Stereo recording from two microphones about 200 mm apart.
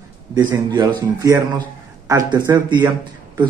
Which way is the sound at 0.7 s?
20° right (ahead or behind).